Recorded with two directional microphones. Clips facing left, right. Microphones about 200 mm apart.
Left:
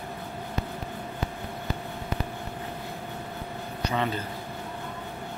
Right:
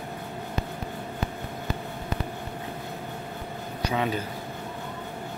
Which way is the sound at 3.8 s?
10° right (ahead or behind).